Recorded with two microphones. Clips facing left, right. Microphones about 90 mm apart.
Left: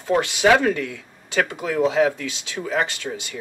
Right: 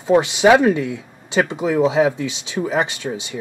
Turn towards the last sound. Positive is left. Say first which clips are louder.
# right 4 dB
turn(degrees=-20)  # may be behind; listen again after turning